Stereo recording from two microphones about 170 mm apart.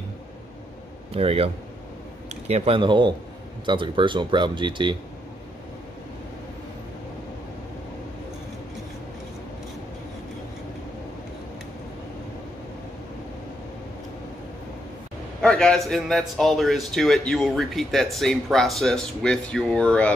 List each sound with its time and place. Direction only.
1.1 s speech: 35° right (ahead or behind)
15.4 s a man's voice: 5° left (ahead or behind)